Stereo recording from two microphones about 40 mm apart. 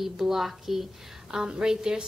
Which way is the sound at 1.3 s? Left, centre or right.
Centre.